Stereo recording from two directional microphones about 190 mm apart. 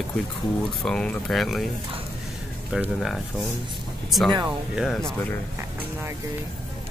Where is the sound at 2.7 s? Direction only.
Centre (ahead or behind).